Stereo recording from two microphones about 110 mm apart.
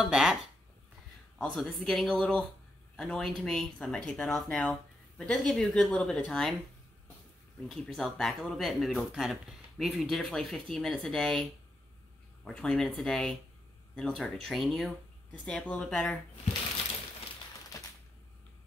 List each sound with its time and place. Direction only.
0.0 s speech: 5° right (ahead or behind)
1.4 s speech: 5° left (ahead or behind)
7.7 s speech: 5° left (ahead or behind)
12.4 s speech: 5° left (ahead or behind)
17.7 s typewriter: 30° left (ahead or behind)